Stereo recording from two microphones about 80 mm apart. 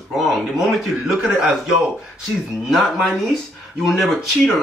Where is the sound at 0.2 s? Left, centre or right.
Centre.